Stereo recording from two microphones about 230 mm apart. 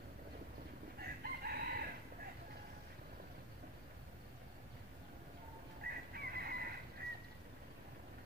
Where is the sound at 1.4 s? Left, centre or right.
Right.